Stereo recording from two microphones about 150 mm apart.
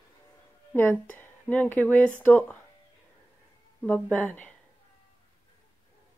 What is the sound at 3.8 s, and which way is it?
Speech, 10° left (ahead or behind).